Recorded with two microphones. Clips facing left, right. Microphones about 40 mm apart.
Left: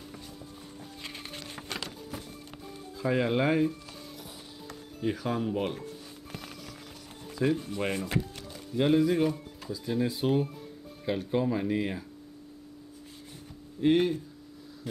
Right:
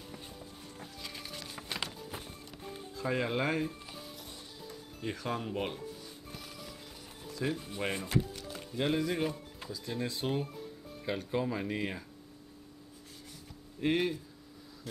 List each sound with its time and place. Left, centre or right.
1.0 s music: left
1.7 s music: centre
3.0 s speech: centre
5.0 s speech: centre
7.3 s speech: centre
7.6 s speech: centre
13.7 s speech: centre